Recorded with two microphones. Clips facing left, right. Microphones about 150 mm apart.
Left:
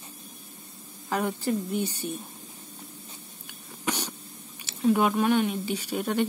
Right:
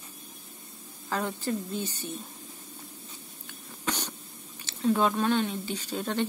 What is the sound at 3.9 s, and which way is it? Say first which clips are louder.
Cough: left 2 dB; 10° left (ahead or behind).